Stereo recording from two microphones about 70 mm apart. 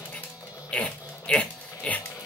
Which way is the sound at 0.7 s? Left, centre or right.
Centre.